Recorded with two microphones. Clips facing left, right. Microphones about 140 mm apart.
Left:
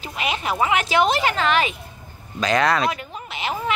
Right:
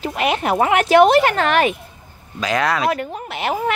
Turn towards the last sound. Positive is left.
turn(degrees=-55)  # may be behind; listen again after turning